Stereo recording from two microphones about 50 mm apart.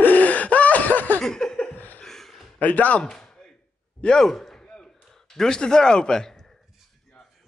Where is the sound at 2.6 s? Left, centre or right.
Left.